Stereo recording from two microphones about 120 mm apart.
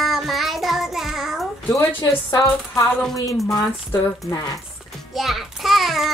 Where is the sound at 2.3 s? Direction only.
30° left (ahead or behind).